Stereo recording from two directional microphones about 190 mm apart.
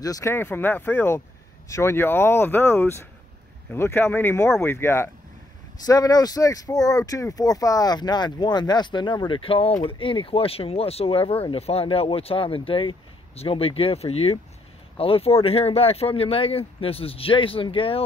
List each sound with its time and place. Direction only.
0.0 s speech: 15° left (ahead or behind)